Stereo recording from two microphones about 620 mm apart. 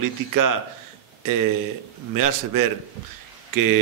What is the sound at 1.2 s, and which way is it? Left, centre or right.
A man's voice, right.